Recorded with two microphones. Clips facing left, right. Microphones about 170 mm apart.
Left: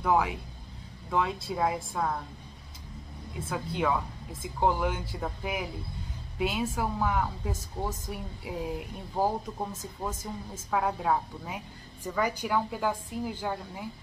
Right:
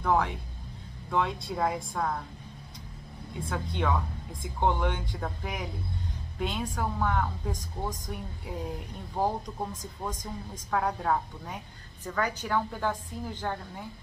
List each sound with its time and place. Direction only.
0.0 s speech: 5° left (ahead or behind)
3.3 s speech: 5° left (ahead or behind)